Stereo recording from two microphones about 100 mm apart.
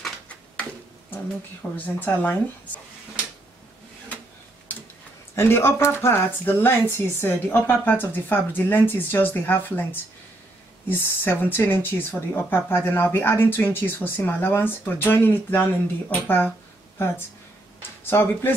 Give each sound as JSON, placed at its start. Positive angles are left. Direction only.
{"t": 1.6, "sound": "speech", "side_deg": 15}
{"t": 5.3, "sound": "speech", "side_deg": 25}
{"t": 18.1, "sound": "speech", "side_deg": 20}